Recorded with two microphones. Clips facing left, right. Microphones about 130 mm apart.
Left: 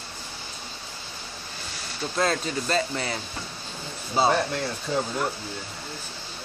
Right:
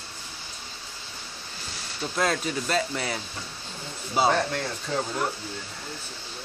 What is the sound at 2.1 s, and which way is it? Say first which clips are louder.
Speech: left 1 dB; 5° right (ahead or behind).